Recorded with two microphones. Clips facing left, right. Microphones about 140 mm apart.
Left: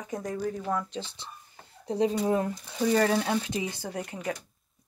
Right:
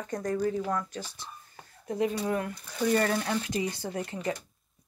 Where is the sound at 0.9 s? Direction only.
25° left (ahead or behind).